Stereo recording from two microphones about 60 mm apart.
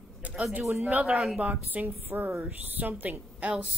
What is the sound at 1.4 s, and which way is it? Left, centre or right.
A woman's voice, right.